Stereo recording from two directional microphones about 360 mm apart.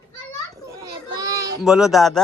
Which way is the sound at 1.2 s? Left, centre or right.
Centre.